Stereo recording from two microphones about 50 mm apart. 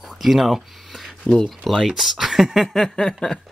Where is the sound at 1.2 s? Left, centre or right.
Centre.